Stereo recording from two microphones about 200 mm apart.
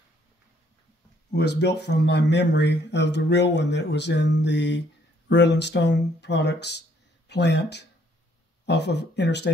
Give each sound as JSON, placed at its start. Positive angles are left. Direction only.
{"t": 1.3, "sound": "speech", "side_deg": 55}